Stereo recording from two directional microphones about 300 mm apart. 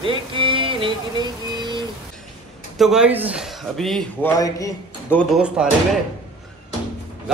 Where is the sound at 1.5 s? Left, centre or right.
Centre.